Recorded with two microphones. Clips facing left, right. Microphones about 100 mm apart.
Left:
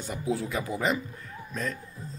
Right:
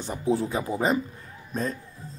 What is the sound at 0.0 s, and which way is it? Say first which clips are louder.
A man's voice: right 5 dB; 30° right (ahead or behind).